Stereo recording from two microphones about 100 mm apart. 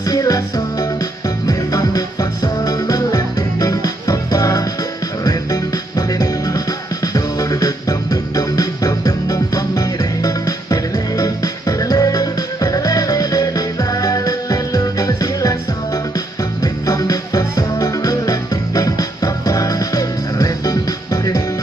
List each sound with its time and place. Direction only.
0.1 s music: 35° left (ahead or behind)
16.6 s music: 35° left (ahead or behind)